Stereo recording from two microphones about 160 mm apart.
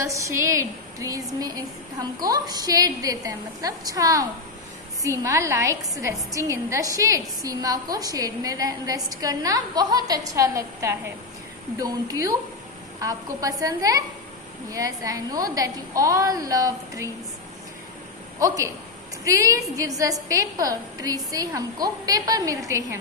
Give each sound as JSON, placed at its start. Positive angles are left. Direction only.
{"t": 0.0, "sound": "a woman's voice", "side_deg": -20}
{"t": 18.4, "sound": "a woman's voice", "side_deg": -20}